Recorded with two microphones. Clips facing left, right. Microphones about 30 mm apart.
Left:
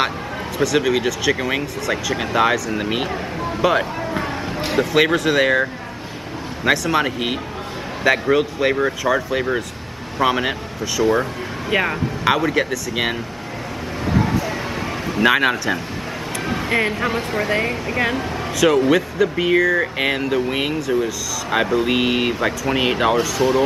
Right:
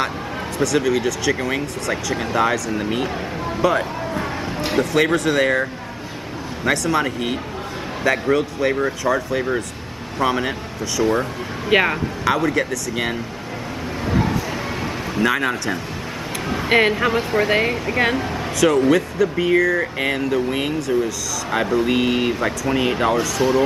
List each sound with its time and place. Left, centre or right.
0.7 s speech: centre
4.8 s speech: centre
6.9 s speech: centre
10.8 s speech: centre
11.7 s speech: right
12.4 s speech: centre
14.1 s a sound: centre
15.2 s speech: left
16.6 s speech: right
16.9 s speech: centre
17.5 s speech: centre
17.8 s speech: centre
18.6 s speech: centre
23.3 s speech: centre